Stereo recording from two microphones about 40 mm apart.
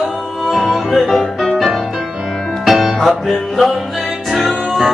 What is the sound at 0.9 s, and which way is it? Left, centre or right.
Music, centre.